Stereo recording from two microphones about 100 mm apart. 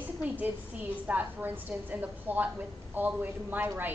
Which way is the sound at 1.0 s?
20° right (ahead or behind).